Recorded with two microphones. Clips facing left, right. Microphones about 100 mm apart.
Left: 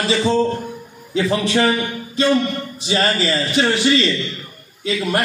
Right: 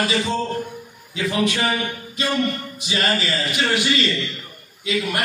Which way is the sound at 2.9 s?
30° left (ahead or behind).